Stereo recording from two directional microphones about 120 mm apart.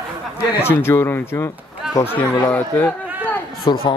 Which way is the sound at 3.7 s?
35° left (ahead or behind).